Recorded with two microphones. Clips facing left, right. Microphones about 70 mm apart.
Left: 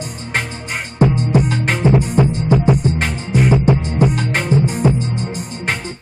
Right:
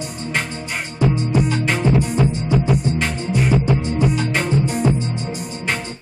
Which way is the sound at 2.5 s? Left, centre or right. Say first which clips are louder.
Left 5 dB; centre.